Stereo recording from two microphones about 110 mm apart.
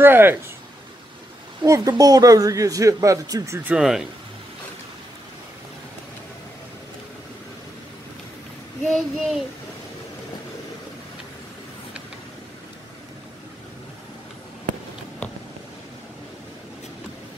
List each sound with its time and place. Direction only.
0.0 s speech: 20° right (ahead or behind)
1.6 s a woman's voice: 30° right (ahead or behind)
3.6 s speech: 5° right (ahead or behind)
8.8 s child singing: 5° left (ahead or behind)